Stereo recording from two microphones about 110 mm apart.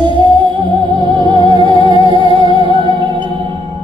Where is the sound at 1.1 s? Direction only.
45° right (ahead or behind).